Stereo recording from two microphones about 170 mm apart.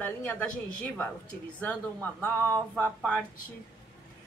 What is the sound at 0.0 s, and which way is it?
Speech, 10° left (ahead or behind).